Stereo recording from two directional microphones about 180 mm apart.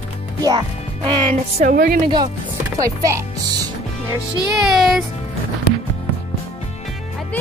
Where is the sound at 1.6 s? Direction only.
55° right (ahead or behind).